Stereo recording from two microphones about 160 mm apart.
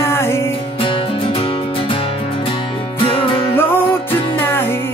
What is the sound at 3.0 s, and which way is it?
Music, 35° left (ahead or behind).